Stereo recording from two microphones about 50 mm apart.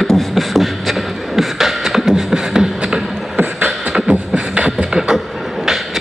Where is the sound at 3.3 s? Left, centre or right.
Right.